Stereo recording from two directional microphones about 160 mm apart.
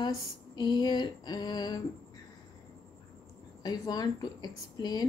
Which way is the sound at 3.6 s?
25° left (ahead or behind).